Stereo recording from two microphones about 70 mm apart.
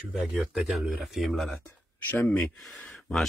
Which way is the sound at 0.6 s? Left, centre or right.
Centre.